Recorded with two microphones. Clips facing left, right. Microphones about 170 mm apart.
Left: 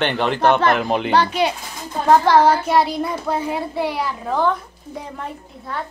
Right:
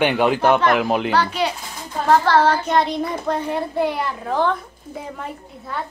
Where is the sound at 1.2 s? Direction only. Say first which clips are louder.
Left 2 dB; 20° left (ahead or behind); by 5.8 s centre (ahead or behind).